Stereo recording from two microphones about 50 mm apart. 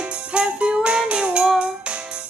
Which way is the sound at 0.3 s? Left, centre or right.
Right.